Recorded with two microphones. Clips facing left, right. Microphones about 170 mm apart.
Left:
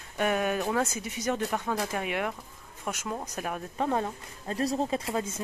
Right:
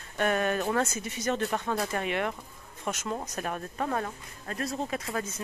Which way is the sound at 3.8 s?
20° left (ahead or behind).